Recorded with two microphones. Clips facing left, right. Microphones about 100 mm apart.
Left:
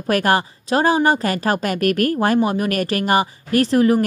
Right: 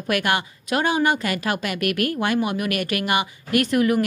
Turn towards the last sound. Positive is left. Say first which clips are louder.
# left 4 dB
turn(degrees=30)  # may be behind; listen again after turning